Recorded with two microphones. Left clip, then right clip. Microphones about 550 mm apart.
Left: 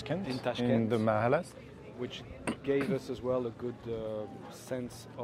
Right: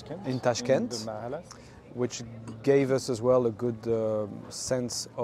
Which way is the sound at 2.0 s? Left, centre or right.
Right.